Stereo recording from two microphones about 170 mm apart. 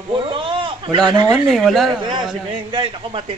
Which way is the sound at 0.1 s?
30° right (ahead or behind).